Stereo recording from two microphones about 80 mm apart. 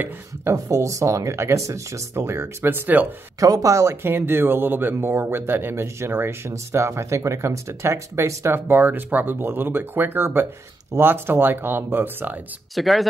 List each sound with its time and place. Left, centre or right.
0.5 s speech: right
3.3 s speech: right
8.5 s speech: right
12.7 s speech: centre